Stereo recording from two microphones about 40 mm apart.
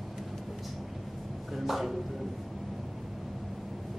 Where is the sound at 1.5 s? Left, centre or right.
Centre.